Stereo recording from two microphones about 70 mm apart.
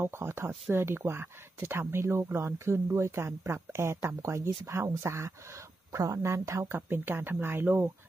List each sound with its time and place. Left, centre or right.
0.0 s speech: right
6.9 s speech: right